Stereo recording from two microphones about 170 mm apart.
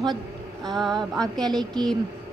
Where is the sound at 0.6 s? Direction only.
Centre (ahead or behind).